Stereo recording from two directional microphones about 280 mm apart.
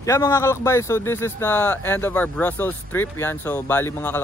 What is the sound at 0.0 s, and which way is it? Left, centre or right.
Speech, centre.